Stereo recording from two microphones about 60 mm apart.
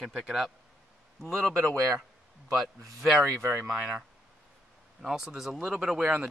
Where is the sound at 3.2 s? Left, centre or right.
Right.